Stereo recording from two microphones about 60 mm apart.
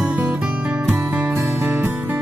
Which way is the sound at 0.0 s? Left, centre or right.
Right.